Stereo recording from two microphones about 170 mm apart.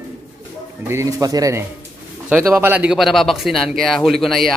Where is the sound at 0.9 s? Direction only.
20° right (ahead or behind).